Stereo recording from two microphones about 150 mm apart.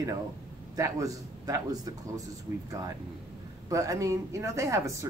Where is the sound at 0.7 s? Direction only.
20° right (ahead or behind).